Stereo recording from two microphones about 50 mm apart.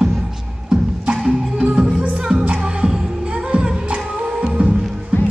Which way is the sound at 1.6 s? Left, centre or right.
Centre.